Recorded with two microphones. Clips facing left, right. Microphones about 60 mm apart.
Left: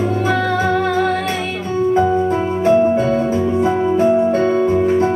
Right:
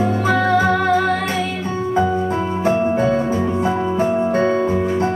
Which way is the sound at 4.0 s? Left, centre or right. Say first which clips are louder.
Left 3 dB; right.